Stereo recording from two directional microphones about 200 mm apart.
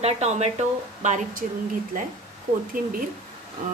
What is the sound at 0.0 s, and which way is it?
A woman's voice, 35° right (ahead or behind).